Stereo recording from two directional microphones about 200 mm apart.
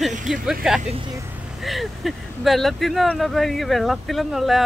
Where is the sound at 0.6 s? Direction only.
5° right (ahead or behind).